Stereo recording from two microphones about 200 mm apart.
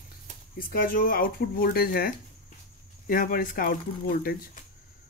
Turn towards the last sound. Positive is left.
turn(degrees=45)  # may be behind; listen again after turning